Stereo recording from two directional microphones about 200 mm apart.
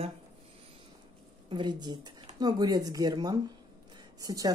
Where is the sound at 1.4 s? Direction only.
25° right (ahead or behind).